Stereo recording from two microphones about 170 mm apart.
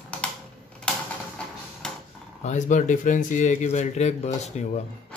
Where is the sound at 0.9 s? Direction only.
5° left (ahead or behind).